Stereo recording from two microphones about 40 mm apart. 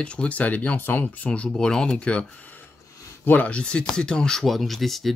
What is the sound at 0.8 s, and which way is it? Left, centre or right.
Speech, left.